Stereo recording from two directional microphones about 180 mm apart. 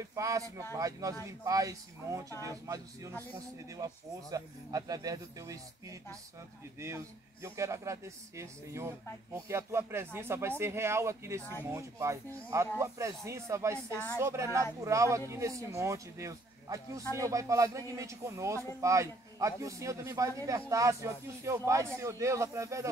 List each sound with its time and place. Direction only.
0.0 s a man's voice: 15° right (ahead or behind)
7.4 s a man's voice: 15° right (ahead or behind)